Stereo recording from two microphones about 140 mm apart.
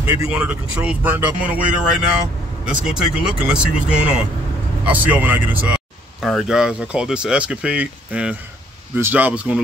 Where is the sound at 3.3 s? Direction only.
5° right (ahead or behind).